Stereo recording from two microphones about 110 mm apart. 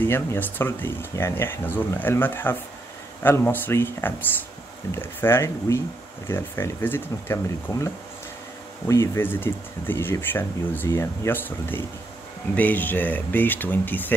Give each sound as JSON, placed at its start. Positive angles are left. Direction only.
{"t": 0.0, "sound": "speech", "side_deg": 20}
{"t": 7.7, "sound": "speech", "side_deg": 30}